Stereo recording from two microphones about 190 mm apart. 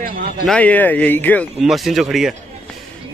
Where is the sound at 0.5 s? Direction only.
10° left (ahead or behind).